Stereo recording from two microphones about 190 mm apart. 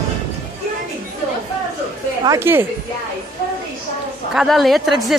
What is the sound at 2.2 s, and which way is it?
Speech, 15° right (ahead or behind).